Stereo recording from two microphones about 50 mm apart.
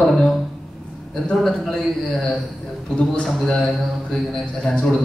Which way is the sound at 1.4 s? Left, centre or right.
Centre.